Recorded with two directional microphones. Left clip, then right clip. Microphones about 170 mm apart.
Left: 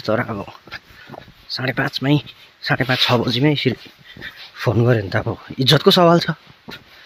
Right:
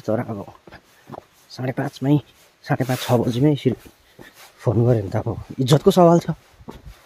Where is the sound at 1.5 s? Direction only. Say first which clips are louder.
Left 6 dB; 15° right (ahead or behind).